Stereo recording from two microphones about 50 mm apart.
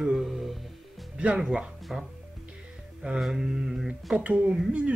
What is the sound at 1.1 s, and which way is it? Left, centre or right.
Speech, centre.